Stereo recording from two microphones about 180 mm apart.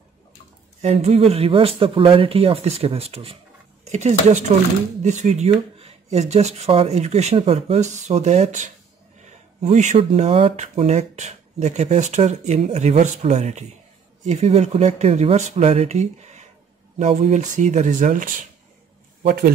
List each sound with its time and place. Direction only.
0.8 s a man's voice: 35° right (ahead or behind); by 19.5 s 55° right (ahead or behind)